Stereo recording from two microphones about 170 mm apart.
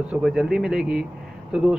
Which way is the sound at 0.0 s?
5° right (ahead or behind).